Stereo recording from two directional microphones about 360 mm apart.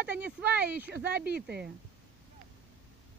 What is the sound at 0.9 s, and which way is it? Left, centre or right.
Speech, right.